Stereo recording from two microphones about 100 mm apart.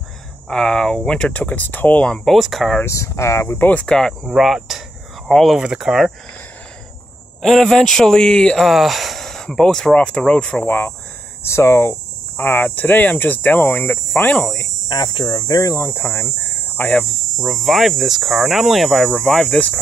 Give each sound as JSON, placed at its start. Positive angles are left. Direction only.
{"t": 0.5, "sound": "speech", "side_deg": 5}
{"t": 2.0, "sound": "speech", "side_deg": 5}
{"t": 2.8, "sound": "speech", "side_deg": 30}
{"t": 7.4, "sound": "speech", "side_deg": 5}
{"t": 8.6, "sound": "speech", "side_deg": 0}
{"t": 14.9, "sound": "speech", "side_deg": 45}
{"t": 16.8, "sound": "speech", "side_deg": 5}